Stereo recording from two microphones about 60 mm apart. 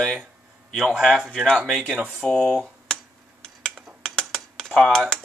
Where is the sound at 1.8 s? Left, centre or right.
Centre.